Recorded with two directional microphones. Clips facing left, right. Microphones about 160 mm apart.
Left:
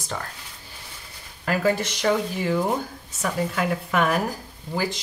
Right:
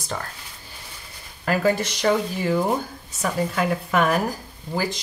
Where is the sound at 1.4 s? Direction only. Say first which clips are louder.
Right 1 dB; 40° right (ahead or behind).